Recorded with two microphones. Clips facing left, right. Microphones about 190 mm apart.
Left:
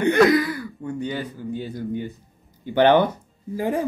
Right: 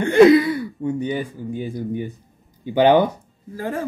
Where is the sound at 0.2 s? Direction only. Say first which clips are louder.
Right 9 dB; 25° right (ahead or behind).